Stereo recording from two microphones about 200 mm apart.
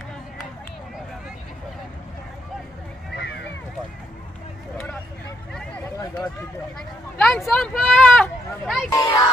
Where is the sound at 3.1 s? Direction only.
55° left (ahead or behind).